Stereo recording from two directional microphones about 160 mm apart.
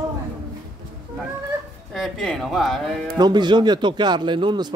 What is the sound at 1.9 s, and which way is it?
Speech, centre (ahead or behind).